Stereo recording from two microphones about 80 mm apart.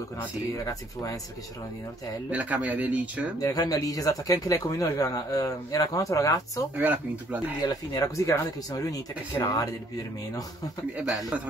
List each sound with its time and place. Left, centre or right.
0.7 s speech: left
2.3 s a man's voice: centre
3.3 s speech: left
6.8 s a man's voice: right
7.6 s speech: left
11.1 s a man's voice: centre